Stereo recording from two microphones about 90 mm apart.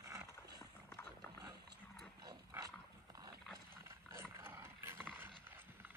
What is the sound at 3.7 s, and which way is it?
Dog, 30° right (ahead or behind).